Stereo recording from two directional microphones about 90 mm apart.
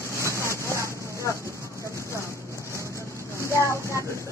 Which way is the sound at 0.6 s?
35° right (ahead or behind).